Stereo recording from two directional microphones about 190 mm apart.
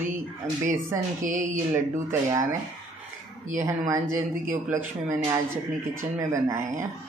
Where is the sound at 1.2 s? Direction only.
40° right (ahead or behind).